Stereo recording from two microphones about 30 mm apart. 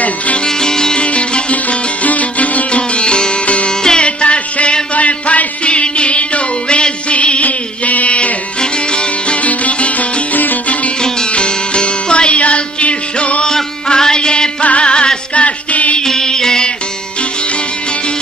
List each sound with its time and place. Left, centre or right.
0.5 s music: left
1.0 s music: left
3.4 s music: left
4.9 s music: left
5.7 s music: left
7.4 s a sound: left
8.5 s music: left
9.4 s music: left
10.3 s music: left
11.0 s music: left
13.8 s music: left
14.6 s music: left
16.0 s music: centre